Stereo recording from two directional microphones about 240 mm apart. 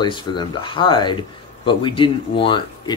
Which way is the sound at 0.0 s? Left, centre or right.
Centre.